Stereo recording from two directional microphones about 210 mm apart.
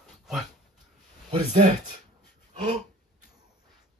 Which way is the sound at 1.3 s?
30° right (ahead or behind).